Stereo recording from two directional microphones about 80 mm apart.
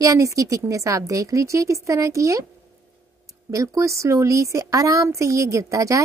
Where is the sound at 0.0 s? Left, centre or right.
Right.